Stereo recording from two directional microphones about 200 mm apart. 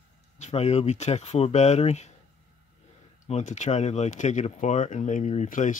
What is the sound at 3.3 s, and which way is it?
Speech, 35° left (ahead or behind).